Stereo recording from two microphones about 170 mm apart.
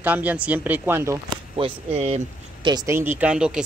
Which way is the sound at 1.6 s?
35° right (ahead or behind).